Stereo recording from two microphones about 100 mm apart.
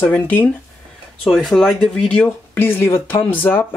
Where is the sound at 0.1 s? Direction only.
15° left (ahead or behind).